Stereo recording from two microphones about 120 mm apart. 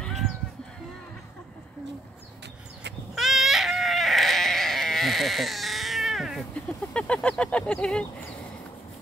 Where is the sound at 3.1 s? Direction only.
Centre (ahead or behind).